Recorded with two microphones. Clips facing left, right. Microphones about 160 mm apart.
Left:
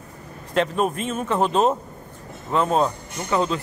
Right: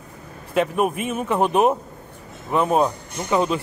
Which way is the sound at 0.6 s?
10° right (ahead or behind).